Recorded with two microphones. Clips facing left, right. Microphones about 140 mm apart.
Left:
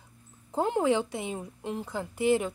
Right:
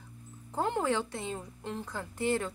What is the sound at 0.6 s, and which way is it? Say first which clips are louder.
A woman's voice: left 4 dB; 15° left (ahead or behind).